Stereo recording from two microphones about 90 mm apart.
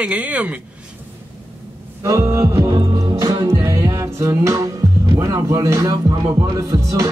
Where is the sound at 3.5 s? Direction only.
35° right (ahead or behind).